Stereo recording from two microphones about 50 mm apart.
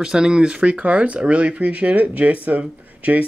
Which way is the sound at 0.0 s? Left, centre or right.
Centre.